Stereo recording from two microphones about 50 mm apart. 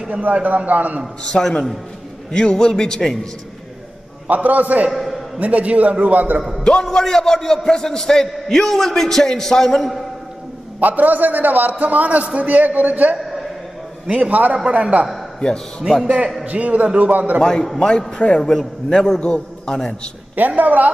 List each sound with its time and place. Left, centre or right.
0.1 s a man's voice: right
1.3 s a man's voice: centre
4.3 s a man's voice: right
4.9 s a sound: centre
5.4 s a man's voice: right
6.6 s a man's voice: centre
10.8 s a man's voice: right
15.8 s a man's voice: centre
16.4 s a man's voice: right
17.4 s a man's voice: centre
20.3 s a man's voice: right